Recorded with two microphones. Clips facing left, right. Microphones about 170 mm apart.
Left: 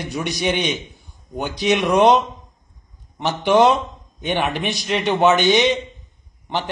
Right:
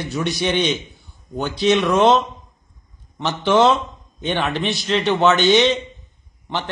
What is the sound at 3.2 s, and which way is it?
A man's voice, 15° left (ahead or behind).